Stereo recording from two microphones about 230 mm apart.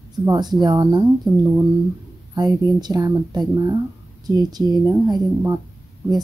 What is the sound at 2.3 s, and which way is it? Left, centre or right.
A woman's voice, centre.